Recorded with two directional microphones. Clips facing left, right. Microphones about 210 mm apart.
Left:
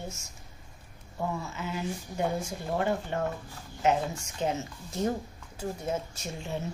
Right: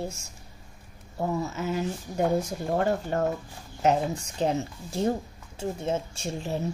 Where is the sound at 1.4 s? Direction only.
40° right (ahead or behind).